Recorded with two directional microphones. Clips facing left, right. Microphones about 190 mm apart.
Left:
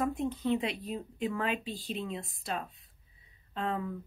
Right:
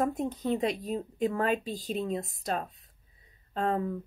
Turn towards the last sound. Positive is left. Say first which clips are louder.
# right 5 dB
turn(degrees=-45)  # may be behind; listen again after turning